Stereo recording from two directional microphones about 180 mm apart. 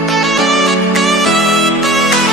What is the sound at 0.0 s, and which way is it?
Music, centre (ahead or behind).